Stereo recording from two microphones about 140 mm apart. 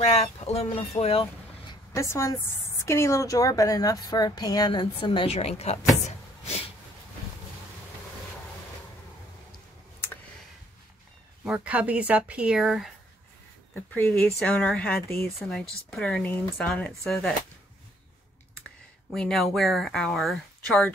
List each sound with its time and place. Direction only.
0.0 s speech: 45° left (ahead or behind)
1.2 s a sound: 25° left (ahead or behind)
2.8 s a woman's voice: 20° left (ahead or behind); by 5.8 s 50° left (ahead or behind)
11.4 s speech: 10° right (ahead or behind)
14.1 s speech: 10° left (ahead or behind)
15.4 s speech: 5° left (ahead or behind)
19.0 s speech: 5° left (ahead or behind)